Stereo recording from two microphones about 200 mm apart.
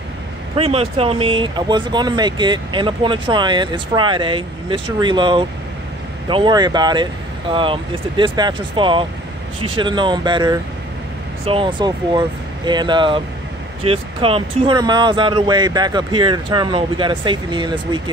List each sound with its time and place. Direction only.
0.6 s speech: 30° right (ahead or behind)